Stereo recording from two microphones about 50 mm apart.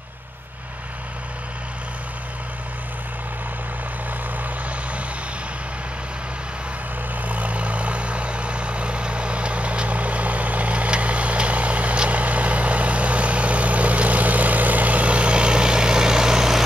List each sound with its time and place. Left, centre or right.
7.2 s vehicle: right; by 16.6 s centre